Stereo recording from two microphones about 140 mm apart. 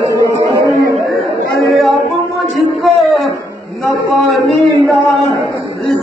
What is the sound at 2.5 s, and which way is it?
Music, centre (ahead or behind).